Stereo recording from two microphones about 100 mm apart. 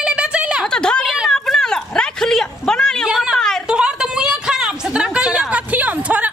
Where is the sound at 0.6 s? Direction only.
10° left (ahead or behind).